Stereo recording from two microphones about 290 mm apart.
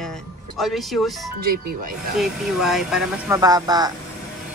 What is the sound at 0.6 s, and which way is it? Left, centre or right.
Speech, centre.